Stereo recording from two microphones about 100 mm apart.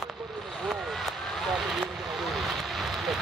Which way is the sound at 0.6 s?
Centre (ahead or behind).